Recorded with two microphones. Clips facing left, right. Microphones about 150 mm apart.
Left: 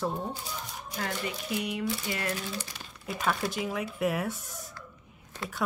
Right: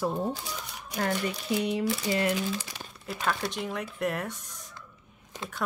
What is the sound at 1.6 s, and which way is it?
Speech, 30° right (ahead or behind).